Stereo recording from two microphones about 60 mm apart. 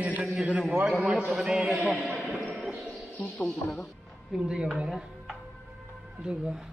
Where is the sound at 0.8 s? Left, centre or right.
Centre.